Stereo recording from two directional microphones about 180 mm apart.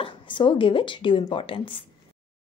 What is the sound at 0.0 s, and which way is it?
Speech, 30° left (ahead or behind).